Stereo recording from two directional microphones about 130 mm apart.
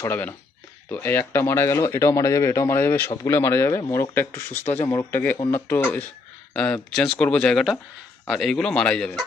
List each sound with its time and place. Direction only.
0.1 s speech: 20° left (ahead or behind)